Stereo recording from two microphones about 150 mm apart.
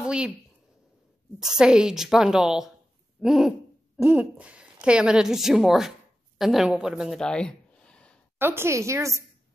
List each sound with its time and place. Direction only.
0.0 s speech: 5° right (ahead or behind)
1.4 s a woman's voice: 5° right (ahead or behind)
8.4 s a woman's voice: 15° right (ahead or behind)